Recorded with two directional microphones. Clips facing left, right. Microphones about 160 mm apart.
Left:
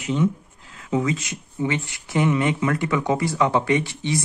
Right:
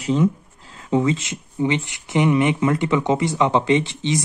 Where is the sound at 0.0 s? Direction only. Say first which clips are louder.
Right 3 dB; 35° right (ahead or behind).